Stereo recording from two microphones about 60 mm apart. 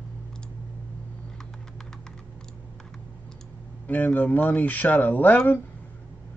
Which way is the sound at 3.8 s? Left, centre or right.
Left.